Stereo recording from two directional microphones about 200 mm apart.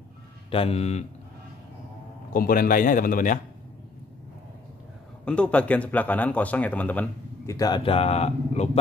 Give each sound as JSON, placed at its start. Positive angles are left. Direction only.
{"t": 0.5, "sound": "speech", "side_deg": 30}
{"t": 2.3, "sound": "a man's voice", "side_deg": 45}
{"t": 5.2, "sound": "speech", "side_deg": 5}